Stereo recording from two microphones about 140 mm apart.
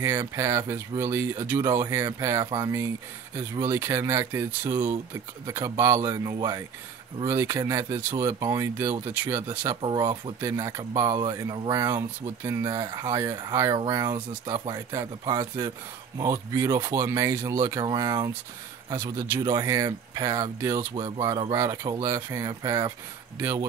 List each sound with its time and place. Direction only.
0.0 s speech: 20° right (ahead or behind)
9.8 s speech: 35° right (ahead or behind)
10.4 s speech: 20° right (ahead or behind)
20.9 s speech: 35° right (ahead or behind)